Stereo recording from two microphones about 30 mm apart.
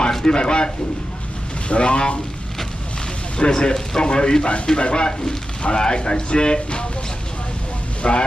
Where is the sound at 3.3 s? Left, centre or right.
Left.